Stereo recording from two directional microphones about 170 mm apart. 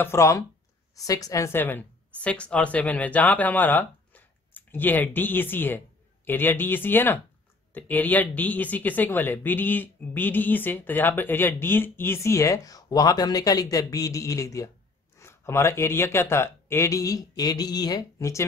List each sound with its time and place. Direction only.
0.0 s a woman's voice: 15° left (ahead or behind)